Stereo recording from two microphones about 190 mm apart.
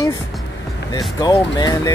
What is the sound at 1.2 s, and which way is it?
Speech, 20° left (ahead or behind).